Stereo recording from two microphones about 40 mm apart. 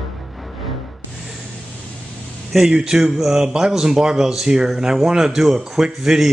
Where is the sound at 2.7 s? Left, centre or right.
Right.